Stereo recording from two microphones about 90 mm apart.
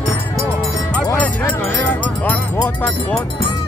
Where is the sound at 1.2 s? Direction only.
20° left (ahead or behind).